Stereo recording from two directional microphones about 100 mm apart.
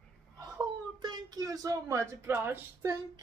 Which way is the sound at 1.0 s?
45° right (ahead or behind).